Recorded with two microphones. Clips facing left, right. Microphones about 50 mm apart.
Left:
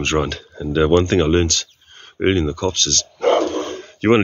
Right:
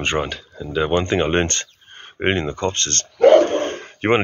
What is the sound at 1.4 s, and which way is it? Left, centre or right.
Speech, right.